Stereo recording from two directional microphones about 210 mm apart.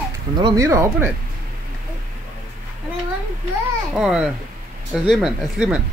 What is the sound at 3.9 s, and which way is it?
Speech, centre (ahead or behind).